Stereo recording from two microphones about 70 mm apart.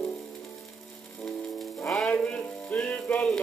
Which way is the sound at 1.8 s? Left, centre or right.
Centre.